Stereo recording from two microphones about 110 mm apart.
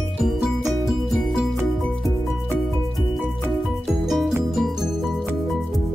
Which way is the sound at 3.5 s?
Centre (ahead or behind).